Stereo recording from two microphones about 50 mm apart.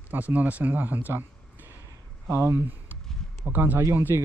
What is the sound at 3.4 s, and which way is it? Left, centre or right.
Speech, right.